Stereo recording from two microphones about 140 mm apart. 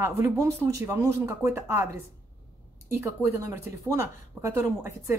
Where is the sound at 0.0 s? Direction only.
20° right (ahead or behind).